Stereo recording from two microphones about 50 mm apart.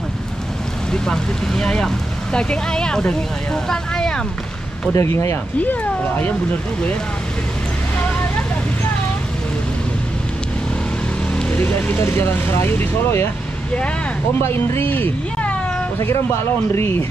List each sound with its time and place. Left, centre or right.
0.9 s speech: centre
4.9 s speech: left
11.5 s speech: left
12.0 s speech: left
14.4 s speech: left
14.8 s speech: left
16.7 s speech: left